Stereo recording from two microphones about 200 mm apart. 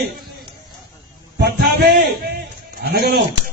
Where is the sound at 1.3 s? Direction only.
55° right (ahead or behind).